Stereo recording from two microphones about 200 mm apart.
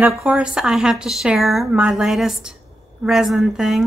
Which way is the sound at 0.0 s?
5° right (ahead or behind).